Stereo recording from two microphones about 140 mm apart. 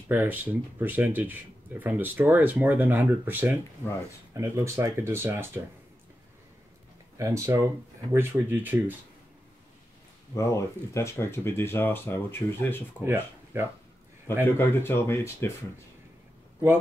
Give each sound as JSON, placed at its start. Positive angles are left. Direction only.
{"t": 0.1, "sound": "speech", "side_deg": -15}
{"t": 7.2, "sound": "speech", "side_deg": -20}
{"t": 10.3, "sound": "speech", "side_deg": 20}
{"t": 13.0, "sound": "speech", "side_deg": -15}
{"t": 14.4, "sound": "speech", "side_deg": 15}